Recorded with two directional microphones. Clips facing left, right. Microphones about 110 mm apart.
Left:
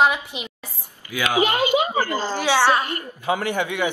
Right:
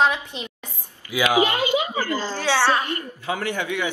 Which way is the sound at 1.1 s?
15° right (ahead or behind).